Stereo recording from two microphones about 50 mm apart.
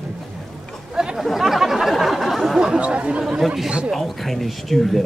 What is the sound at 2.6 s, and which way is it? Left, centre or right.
Speech, centre.